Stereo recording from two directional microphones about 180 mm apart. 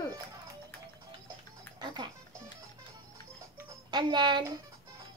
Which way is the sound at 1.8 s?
25° right (ahead or behind).